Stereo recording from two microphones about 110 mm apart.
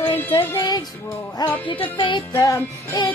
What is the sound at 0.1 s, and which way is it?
Music, 50° left (ahead or behind).